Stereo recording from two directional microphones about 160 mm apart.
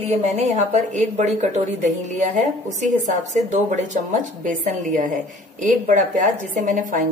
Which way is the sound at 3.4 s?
50° right (ahead or behind).